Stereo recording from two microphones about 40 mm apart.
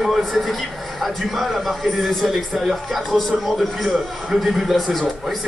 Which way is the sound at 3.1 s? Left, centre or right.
Centre.